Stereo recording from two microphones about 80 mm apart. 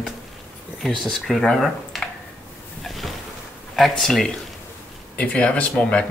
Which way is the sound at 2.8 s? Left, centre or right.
Centre.